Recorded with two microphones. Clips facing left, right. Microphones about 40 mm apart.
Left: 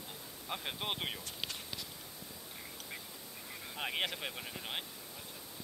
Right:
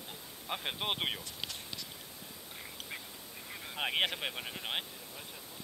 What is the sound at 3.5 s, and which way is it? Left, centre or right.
Speech, right.